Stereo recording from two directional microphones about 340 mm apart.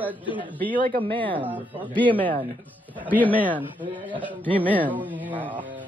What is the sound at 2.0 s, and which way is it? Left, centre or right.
A woman's voice, centre.